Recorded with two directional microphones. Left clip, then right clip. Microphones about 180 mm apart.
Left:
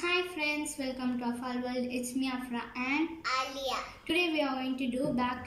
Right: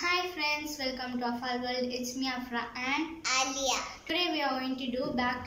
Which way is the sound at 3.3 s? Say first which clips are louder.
Right 7 dB; 15° right (ahead or behind).